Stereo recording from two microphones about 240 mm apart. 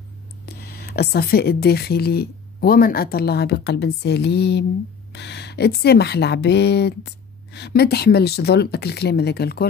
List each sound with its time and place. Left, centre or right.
0.5 s speech: left